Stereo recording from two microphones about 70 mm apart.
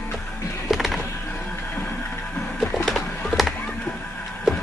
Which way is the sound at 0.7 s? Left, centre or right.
Centre.